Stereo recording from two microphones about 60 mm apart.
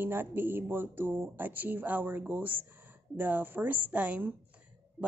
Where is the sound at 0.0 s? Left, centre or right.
Right.